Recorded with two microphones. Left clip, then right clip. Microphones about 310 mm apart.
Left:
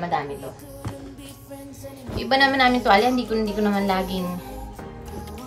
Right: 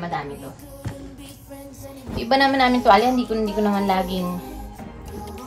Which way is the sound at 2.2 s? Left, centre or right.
Centre.